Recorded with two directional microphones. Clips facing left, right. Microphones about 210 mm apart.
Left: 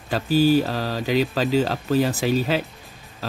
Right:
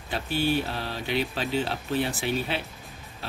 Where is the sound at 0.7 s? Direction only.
40° left (ahead or behind).